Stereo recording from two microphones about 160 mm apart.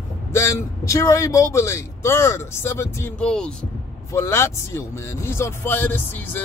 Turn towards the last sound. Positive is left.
turn(degrees=10)  # may be behind; listen again after turning